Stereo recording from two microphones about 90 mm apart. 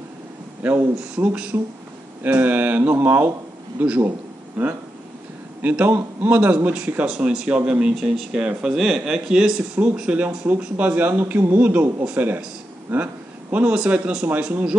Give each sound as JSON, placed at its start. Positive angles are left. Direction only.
{"t": 0.6, "sound": "a man's voice", "side_deg": -20}
{"t": 4.6, "sound": "a man's voice", "side_deg": -15}